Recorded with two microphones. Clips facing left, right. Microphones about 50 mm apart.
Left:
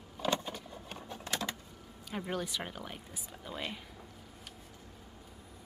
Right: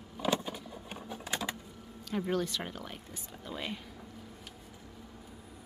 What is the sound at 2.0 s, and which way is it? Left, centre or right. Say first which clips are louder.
Speech: right 5 dB; centre.